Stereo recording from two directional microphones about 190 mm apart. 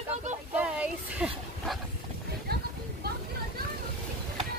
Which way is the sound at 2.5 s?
55° right (ahead or behind).